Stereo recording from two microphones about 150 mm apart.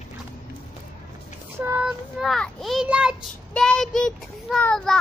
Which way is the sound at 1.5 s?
15° right (ahead or behind).